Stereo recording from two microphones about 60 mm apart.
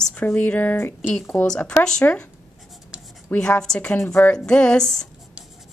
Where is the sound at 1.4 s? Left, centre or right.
Centre.